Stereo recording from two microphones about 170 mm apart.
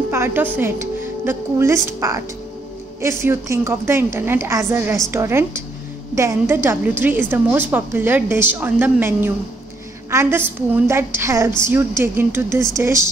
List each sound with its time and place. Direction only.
0.1 s a woman's voice: 15° right (ahead or behind)